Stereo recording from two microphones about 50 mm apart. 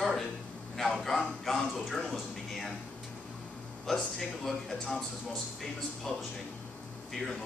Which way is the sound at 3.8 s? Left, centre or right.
Centre.